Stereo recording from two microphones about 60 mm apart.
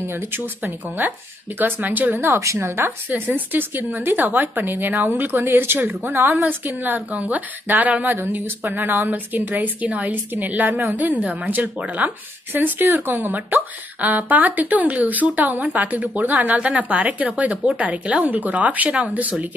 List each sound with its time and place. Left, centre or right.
0.0 s a woman's voice: right
2.4 s speech: right
2.8 s a woman's voice: right
6.4 s a woman's voice: right